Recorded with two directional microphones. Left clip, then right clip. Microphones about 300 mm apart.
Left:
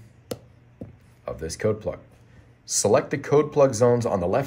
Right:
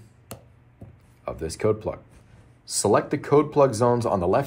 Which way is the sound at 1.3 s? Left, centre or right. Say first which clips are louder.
Right 1 dB; centre.